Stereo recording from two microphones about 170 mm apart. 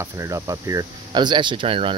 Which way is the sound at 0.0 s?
20° right (ahead or behind).